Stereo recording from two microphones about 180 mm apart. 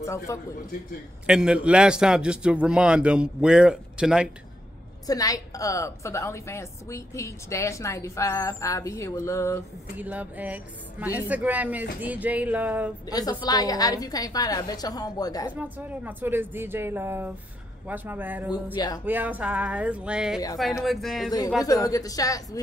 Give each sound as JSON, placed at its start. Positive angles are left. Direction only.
{"t": 0.0, "sound": "a woman's voice", "side_deg": 15}
{"t": 1.2, "sound": "a man's voice", "side_deg": -5}
{"t": 5.0, "sound": "a woman's voice", "side_deg": 20}
{"t": 9.9, "sound": "speech", "side_deg": -10}
{"t": 13.1, "sound": "a woman's voice", "side_deg": 20}
{"t": 15.5, "sound": "a man's voice", "side_deg": -10}
{"t": 21.6, "sound": "a woman's voice", "side_deg": 20}